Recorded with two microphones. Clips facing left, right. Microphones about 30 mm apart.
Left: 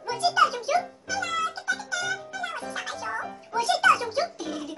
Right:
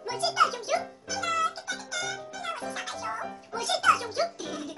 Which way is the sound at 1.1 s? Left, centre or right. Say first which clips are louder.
Right 4 dB; centre.